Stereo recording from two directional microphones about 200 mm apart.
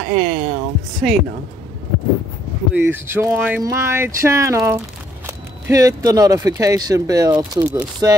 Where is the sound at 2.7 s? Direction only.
10° right (ahead or behind).